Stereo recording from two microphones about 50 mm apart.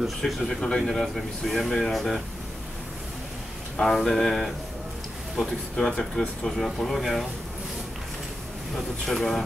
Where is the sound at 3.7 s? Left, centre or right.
Centre.